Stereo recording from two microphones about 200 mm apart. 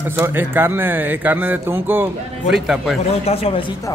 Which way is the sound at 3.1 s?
30° left (ahead or behind).